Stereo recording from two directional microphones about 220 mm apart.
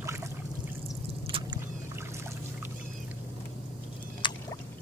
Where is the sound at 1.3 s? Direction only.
25° right (ahead or behind).